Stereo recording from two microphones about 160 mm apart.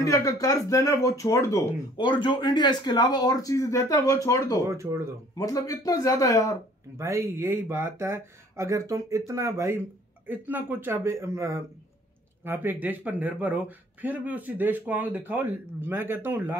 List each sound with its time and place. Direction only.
0.0 s speech: 20° left (ahead or behind)
4.6 s speech: 20° right (ahead or behind)
5.4 s speech: 20° left (ahead or behind)
7.0 s speech: 15° right (ahead or behind)